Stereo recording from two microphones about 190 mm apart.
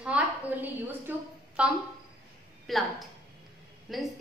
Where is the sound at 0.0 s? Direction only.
10° right (ahead or behind).